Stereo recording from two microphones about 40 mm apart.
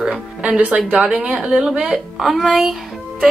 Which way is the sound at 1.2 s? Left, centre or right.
Centre.